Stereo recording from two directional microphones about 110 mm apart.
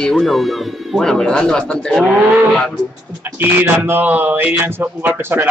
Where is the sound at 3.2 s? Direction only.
15° right (ahead or behind).